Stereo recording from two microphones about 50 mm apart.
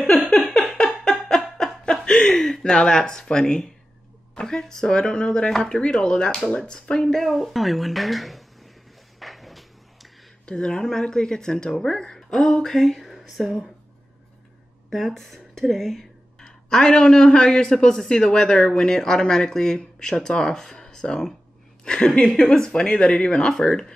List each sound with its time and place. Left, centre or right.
0.3 s a sound: centre
1.6 s chuckle: centre
4.4 s speech: centre
7.2 s speech: centre
9.2 s a sound: centre
10.4 s speech: centre
14.9 s speech: centre